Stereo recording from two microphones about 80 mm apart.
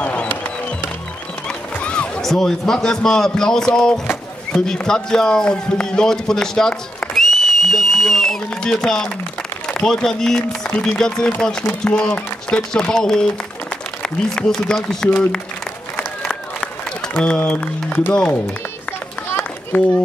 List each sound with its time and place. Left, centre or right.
0.0 s music: centre
1.8 s a man's voice: centre
7.2 s a sound: centre
9.7 s a man's voice: centre
17.4 s a man's voice: centre
19.7 s a man's voice: centre